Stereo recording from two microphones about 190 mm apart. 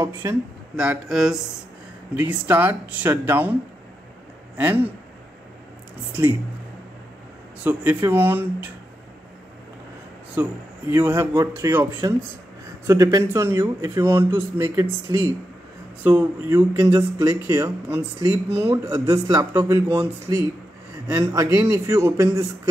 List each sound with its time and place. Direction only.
0.0 s speech: 15° right (ahead or behind)
0.7 s speech: centre (ahead or behind)
4.6 s speech: 10° right (ahead or behind)
7.6 s speech: 10° right (ahead or behind)
10.3 s speech: 10° right (ahead or behind)